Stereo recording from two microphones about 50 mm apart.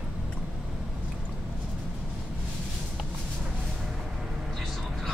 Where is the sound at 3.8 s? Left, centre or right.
Centre.